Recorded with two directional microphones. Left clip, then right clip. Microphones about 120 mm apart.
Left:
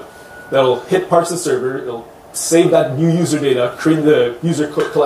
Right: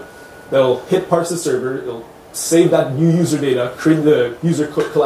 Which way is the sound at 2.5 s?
15° left (ahead or behind).